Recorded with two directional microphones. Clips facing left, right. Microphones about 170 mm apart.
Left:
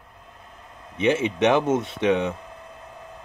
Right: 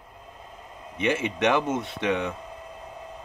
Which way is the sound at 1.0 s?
20° left (ahead or behind).